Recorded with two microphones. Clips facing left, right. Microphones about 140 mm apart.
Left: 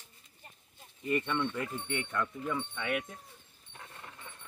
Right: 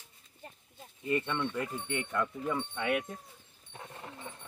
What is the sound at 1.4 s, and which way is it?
Speech, 10° right (ahead or behind).